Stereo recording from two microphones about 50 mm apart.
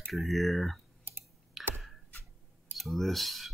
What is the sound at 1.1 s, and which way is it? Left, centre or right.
Typing, right.